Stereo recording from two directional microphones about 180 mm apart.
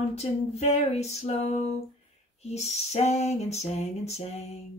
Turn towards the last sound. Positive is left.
turn(degrees=35)  # may be behind; listen again after turning